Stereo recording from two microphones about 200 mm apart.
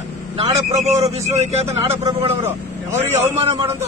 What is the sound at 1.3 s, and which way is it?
Speech, 35° right (ahead or behind).